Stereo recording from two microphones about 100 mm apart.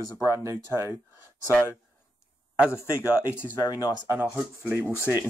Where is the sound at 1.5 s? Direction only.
25° left (ahead or behind).